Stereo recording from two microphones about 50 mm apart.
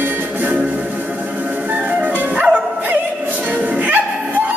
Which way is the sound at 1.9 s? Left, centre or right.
Right.